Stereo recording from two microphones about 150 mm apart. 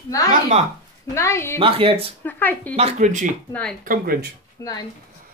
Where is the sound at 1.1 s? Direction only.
20° left (ahead or behind).